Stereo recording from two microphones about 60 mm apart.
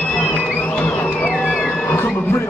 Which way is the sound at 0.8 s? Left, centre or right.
Left.